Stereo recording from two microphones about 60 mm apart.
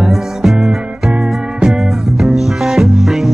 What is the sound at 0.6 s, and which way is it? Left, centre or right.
Music, centre.